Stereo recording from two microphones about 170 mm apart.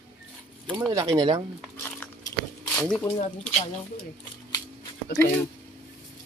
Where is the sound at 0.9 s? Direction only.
20° right (ahead or behind).